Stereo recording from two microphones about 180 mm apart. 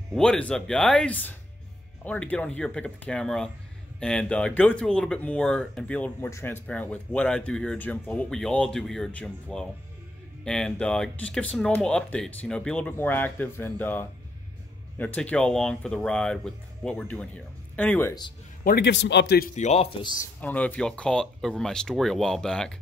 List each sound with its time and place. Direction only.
0.1 s speech: 5° left (ahead or behind)
18.6 s speech: 60° left (ahead or behind)
19.5 s speech: 40° left (ahead or behind)
20.3 s speech: 10° left (ahead or behind)